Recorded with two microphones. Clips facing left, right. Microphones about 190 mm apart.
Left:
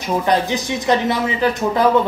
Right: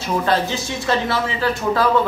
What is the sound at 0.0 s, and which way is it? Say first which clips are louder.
A woman's voice: left 2 dB; 15° left (ahead or behind).